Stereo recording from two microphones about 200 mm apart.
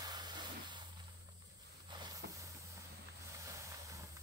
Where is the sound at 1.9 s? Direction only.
20° right (ahead or behind).